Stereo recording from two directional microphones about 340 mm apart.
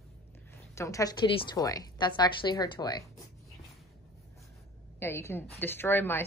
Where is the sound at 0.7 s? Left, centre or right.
Centre.